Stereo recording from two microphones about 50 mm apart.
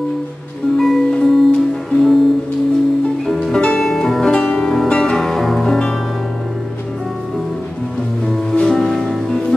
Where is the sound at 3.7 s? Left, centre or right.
Centre.